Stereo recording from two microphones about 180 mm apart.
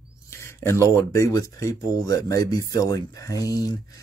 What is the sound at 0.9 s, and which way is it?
Speech, 15° left (ahead or behind).